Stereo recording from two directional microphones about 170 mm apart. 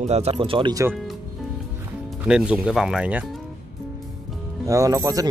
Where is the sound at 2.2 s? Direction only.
5° right (ahead or behind).